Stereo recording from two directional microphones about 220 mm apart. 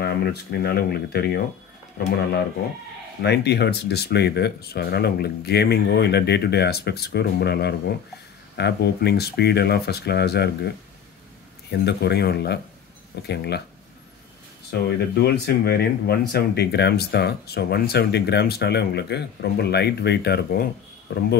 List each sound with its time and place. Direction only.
0.0 s speech: 45° left (ahead or behind)
3.2 s speech: 50° left (ahead or behind)
11.8 s speech: 50° left (ahead or behind)
14.7 s speech: 50° left (ahead or behind)